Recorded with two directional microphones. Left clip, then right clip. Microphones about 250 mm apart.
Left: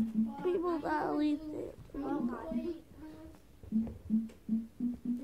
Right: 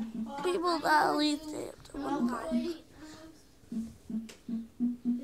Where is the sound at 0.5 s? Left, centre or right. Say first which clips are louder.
Right 4 dB; right.